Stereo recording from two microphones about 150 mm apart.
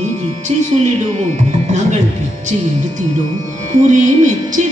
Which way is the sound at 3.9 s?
55° right (ahead or behind).